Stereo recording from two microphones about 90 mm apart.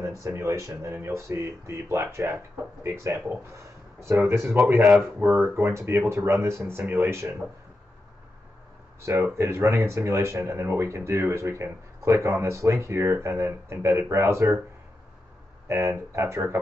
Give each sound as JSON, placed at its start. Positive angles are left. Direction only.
{"t": 0.0, "sound": "speech", "side_deg": -30}
{"t": 9.0, "sound": "speech", "side_deg": -30}
{"t": 15.7, "sound": "speech", "side_deg": -30}